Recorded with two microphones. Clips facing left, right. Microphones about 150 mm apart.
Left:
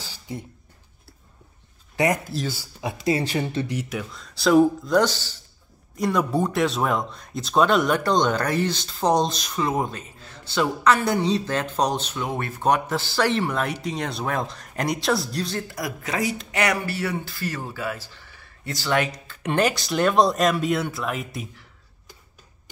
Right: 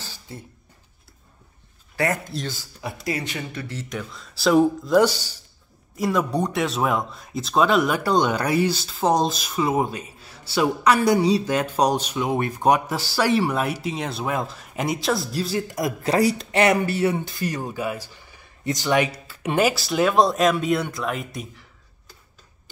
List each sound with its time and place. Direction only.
0.0 s a sound: 15° left (ahead or behind)
2.2 s speech: 5° left (ahead or behind)
2.8 s speech: 25° left (ahead or behind)
3.9 s speech: centre (ahead or behind)
5.9 s speech: centre (ahead or behind)
15.7 s speech: 25° right (ahead or behind); by 21.6 s centre (ahead or behind)